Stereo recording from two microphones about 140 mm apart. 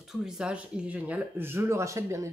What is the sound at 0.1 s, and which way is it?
Speech, 5° right (ahead or behind).